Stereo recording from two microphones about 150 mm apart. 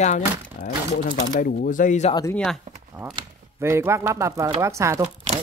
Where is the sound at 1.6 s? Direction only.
60° left (ahead or behind).